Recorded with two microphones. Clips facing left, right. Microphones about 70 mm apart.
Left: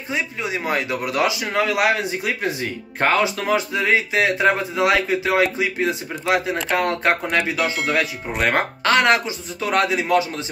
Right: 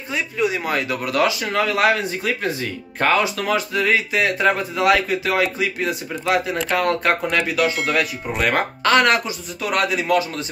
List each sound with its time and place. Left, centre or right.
0.1 s a man's voice: left